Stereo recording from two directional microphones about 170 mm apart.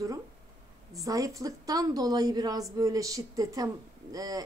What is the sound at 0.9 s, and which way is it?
A woman's voice, 20° right (ahead or behind).